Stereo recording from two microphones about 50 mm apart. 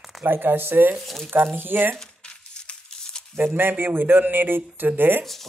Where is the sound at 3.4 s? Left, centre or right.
Right.